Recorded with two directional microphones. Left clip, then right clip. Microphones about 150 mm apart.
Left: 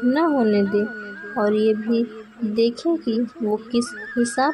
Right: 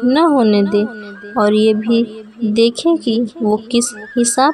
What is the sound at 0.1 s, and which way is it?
Speech, 35° right (ahead or behind).